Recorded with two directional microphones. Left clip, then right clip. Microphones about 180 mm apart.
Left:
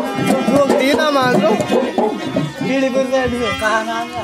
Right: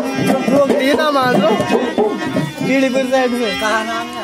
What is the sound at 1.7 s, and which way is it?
Music, centre (ahead or behind).